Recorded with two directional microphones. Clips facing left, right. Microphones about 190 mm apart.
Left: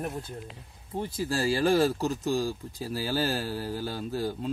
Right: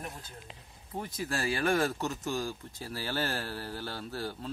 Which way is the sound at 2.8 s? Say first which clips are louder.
Left 5 dB; 10° left (ahead or behind).